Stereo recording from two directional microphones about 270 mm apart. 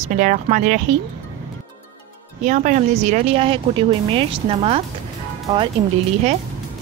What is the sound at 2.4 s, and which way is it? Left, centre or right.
Speech, right.